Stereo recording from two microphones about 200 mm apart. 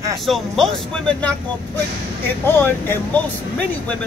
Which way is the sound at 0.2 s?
Centre (ahead or behind).